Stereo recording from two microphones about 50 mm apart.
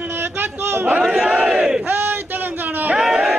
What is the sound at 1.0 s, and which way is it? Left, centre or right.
Battle cry, centre.